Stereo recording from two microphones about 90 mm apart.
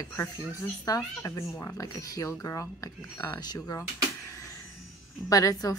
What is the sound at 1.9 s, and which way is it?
Speech, 45° left (ahead or behind).